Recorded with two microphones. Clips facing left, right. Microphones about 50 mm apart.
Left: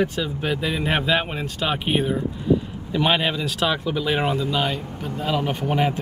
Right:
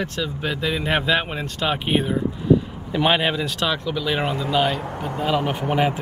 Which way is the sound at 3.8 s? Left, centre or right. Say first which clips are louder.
Left 1 dB; centre.